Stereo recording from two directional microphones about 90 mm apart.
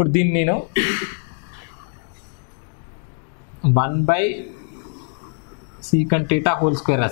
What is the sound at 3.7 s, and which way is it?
Speech, 15° left (ahead or behind).